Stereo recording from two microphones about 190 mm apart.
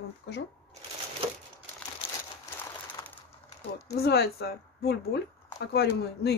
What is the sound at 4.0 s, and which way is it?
Speech, 55° left (ahead or behind).